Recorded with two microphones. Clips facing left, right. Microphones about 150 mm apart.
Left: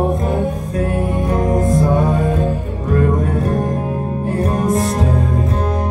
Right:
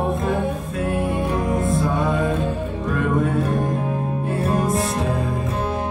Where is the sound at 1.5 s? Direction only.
40° left (ahead or behind).